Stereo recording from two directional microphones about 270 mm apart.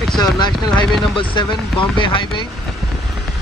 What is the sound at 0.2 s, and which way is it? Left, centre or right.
Speech, centre.